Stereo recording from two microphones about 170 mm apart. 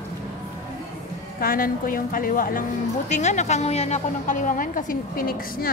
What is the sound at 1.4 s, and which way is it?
A woman's voice, 55° left (ahead or behind).